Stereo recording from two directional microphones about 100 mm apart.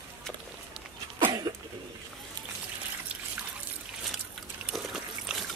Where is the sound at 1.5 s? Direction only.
50° right (ahead or behind).